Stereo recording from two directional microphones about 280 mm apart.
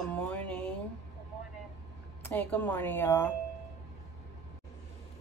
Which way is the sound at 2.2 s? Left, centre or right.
Centre.